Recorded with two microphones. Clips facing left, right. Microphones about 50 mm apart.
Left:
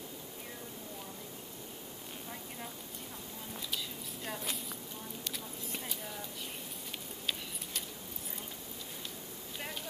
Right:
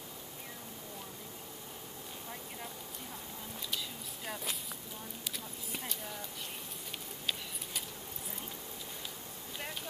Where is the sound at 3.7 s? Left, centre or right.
Centre.